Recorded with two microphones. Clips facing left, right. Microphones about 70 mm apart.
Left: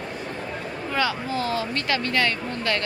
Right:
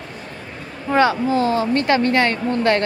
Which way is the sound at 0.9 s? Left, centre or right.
Right.